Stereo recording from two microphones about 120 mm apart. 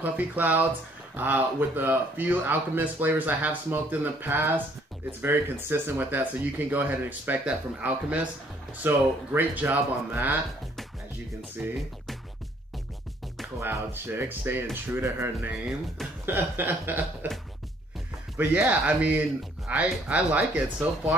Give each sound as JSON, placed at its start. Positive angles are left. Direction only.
{"t": 0.0, "sound": "speech", "side_deg": -15}
{"t": 13.6, "sound": "speech", "side_deg": -20}
{"t": 18.4, "sound": "speech", "side_deg": -15}